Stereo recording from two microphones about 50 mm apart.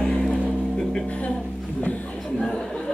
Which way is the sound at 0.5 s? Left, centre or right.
Centre.